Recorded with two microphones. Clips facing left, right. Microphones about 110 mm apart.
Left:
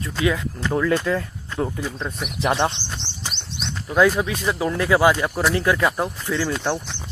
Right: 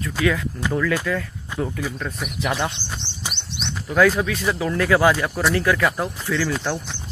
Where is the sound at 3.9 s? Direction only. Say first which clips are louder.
Even; 15° left (ahead or behind).